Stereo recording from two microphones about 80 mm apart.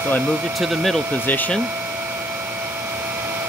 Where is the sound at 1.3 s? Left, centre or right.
Left.